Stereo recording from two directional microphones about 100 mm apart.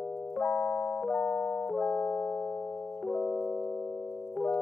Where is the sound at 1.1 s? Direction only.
10° left (ahead or behind).